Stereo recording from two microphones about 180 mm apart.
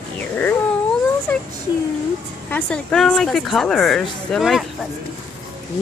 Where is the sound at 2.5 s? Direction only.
5° left (ahead or behind).